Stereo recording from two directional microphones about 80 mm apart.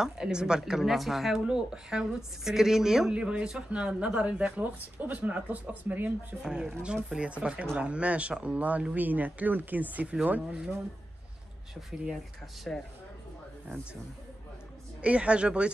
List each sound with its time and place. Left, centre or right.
0.0 s speech: centre
6.4 s speech: centre
12.7 s speech: centre
15.0 s speech: centre